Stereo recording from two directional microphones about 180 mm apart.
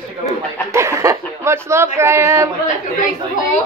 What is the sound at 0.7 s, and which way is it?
Chuckle, 15° right (ahead or behind).